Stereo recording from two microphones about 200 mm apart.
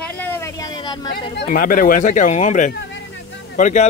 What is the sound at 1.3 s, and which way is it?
Speech, 50° left (ahead or behind).